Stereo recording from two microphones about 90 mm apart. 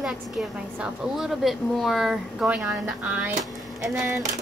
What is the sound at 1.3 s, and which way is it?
A woman's voice, centre (ahead or behind).